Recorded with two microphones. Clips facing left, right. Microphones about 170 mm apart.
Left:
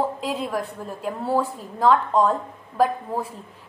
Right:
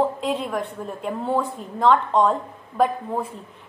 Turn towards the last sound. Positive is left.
turn(degrees=5)  # may be behind; listen again after turning